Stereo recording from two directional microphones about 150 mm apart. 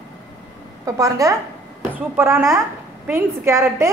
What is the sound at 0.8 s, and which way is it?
A woman's voice, 20° right (ahead or behind).